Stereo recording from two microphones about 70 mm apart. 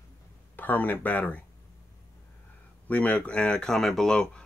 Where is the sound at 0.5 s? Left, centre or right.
Left.